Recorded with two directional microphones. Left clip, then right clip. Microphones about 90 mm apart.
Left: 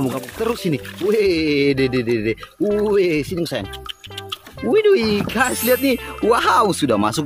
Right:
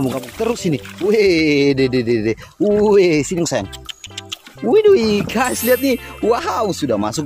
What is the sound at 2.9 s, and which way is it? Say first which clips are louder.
Speech: right 5 dB; 45° right (ahead or behind).